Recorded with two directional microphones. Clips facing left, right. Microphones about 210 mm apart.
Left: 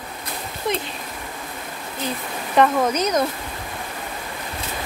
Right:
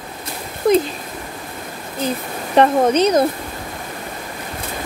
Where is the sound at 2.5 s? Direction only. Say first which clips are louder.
Right 5 dB; 30° right (ahead or behind).